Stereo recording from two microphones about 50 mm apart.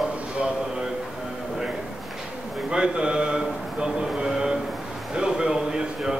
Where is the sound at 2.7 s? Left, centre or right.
Centre.